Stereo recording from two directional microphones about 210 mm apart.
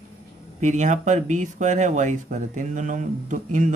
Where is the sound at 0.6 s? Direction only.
35° right (ahead or behind).